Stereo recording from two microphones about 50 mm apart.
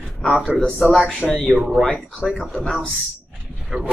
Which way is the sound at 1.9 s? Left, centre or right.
Centre.